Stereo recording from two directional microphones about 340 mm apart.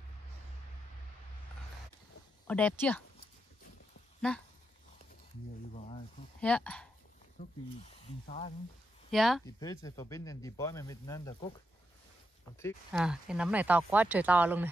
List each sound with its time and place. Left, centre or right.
2.4 s speech: centre
4.2 s speech: centre
5.8 s a sound: centre
6.4 s speech: centre
7.3 s speech: centre
9.1 s speech: centre
12.5 s speech: centre